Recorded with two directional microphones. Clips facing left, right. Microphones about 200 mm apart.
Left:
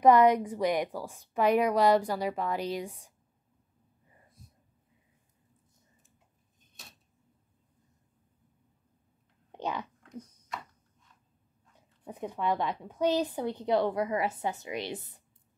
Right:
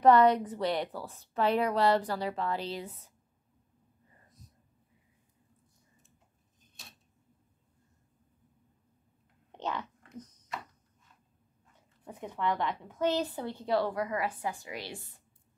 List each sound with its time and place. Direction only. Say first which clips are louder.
0.0 s a woman's voice: left 1 dB; 10° left (ahead or behind)
9.5 s whispering: left 1 dB; 10° left (ahead or behind)
10.1 s a sound: left 2 dB; 10° left (ahead or behind)
12.0 s a woman's voice: left 1 dB; 15° left (ahead or behind)